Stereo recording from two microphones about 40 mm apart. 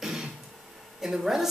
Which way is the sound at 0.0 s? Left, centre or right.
Centre.